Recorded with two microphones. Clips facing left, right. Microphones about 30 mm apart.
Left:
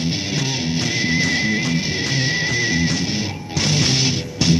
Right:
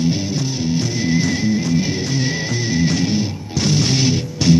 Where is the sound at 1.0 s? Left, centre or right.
Left.